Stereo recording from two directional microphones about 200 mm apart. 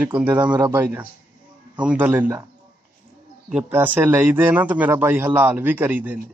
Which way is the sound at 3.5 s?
10° right (ahead or behind).